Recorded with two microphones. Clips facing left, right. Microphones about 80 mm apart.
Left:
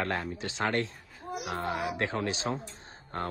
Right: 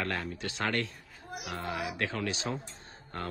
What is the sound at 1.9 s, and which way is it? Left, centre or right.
Speech, left.